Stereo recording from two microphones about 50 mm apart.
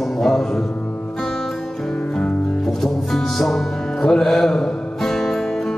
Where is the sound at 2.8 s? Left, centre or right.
Centre.